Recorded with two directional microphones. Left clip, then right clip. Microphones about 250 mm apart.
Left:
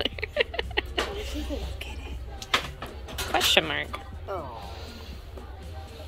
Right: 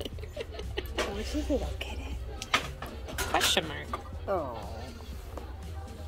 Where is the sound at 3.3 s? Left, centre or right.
Centre.